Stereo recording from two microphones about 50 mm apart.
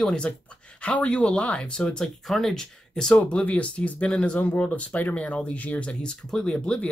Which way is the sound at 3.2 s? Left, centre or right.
Left.